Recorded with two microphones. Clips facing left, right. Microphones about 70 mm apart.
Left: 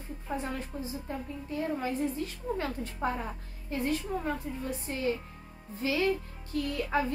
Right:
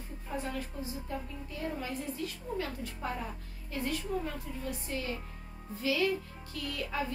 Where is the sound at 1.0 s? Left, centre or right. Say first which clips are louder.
Left 2 dB; left.